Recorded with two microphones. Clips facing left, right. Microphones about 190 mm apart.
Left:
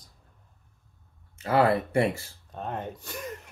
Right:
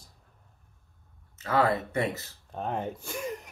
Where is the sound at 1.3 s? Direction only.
30° left (ahead or behind).